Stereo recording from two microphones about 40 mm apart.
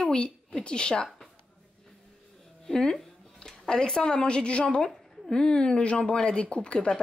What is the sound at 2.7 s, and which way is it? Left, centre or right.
A woman's voice, centre.